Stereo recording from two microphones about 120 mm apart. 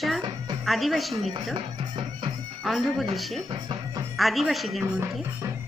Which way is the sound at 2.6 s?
Centre (ahead or behind).